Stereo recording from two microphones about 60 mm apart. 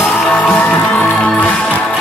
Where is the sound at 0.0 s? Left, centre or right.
Left.